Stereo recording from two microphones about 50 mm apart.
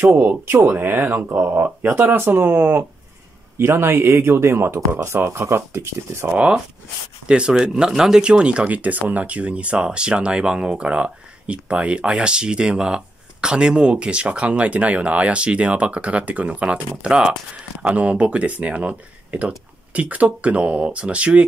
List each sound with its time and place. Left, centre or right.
0.2 s speech: right
7.2 s speech: centre
8.2 s speech: centre